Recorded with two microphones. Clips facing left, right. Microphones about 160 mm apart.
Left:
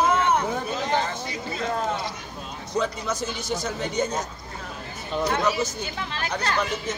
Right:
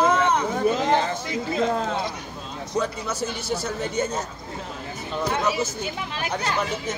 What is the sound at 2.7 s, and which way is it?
Speech, 10° right (ahead or behind).